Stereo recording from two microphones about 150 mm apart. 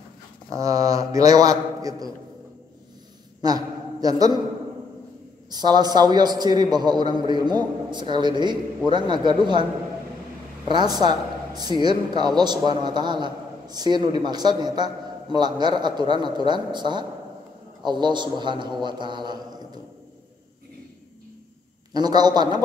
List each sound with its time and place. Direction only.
0.5 s a man's voice: 25° right (ahead or behind)
3.3 s a man's voice: 25° right (ahead or behind)
5.5 s a man's voice: 25° right (ahead or behind)
10.7 s a man's voice: 30° right (ahead or behind)
21.9 s a man's voice: 25° right (ahead or behind)